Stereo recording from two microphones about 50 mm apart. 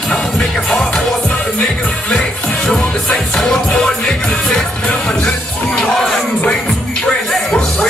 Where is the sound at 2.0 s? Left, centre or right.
Centre.